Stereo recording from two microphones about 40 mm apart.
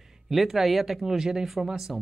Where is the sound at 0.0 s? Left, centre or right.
Centre.